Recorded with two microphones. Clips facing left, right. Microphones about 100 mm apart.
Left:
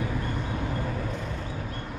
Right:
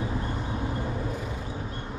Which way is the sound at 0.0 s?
25° right (ahead or behind).